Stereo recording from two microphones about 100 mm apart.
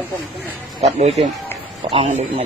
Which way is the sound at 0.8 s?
90° right.